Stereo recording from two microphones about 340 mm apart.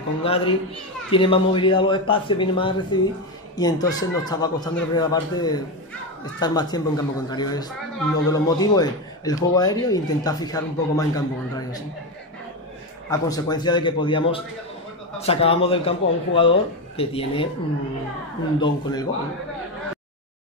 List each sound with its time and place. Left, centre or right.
0.2 s speech: centre
13.1 s speech: centre
18.6 s speech: centre